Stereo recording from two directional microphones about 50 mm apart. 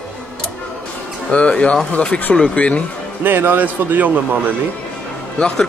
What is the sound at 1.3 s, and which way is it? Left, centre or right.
Speech, left.